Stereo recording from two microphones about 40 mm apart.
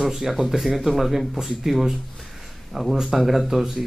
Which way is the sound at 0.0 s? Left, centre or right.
Centre.